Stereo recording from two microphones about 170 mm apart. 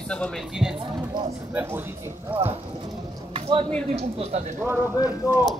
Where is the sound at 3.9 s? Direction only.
40° right (ahead or behind).